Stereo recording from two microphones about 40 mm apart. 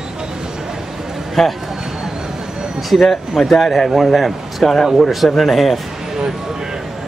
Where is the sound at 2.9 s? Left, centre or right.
Centre.